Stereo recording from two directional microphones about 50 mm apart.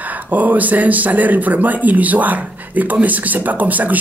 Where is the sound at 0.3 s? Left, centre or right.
Right.